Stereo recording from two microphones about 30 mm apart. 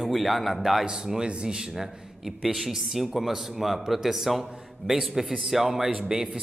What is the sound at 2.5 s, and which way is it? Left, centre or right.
A man's voice, centre.